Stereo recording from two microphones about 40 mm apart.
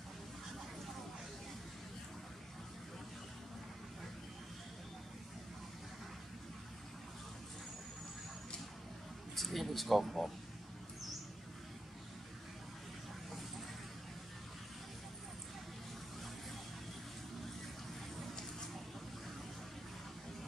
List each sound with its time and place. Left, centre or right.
9.3 s speech: centre